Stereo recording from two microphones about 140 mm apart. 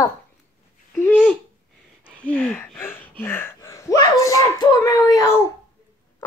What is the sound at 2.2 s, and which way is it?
Gasp, 10° left (ahead or behind).